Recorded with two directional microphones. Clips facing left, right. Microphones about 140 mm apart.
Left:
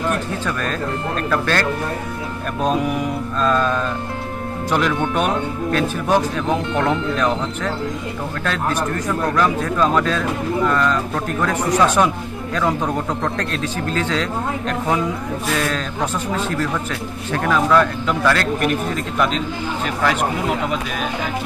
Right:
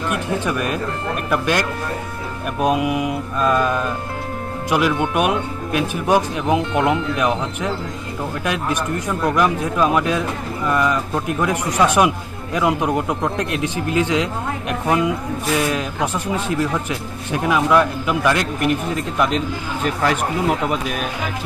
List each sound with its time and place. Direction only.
0.1 s speech: 15° right (ahead or behind)